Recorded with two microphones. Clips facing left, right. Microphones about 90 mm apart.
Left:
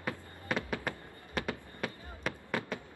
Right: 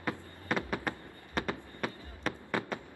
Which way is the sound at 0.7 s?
20° right (ahead or behind).